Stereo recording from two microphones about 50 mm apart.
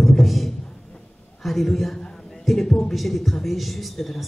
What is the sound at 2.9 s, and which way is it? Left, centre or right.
Speech, centre.